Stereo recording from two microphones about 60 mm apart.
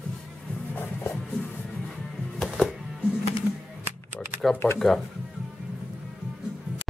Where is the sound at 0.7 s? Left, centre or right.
Left.